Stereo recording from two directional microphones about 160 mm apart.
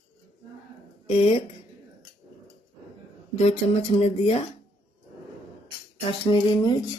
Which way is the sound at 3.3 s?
40° left (ahead or behind).